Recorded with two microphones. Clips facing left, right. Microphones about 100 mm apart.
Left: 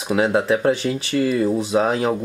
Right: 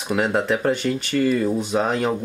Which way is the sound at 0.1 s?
Centre (ahead or behind).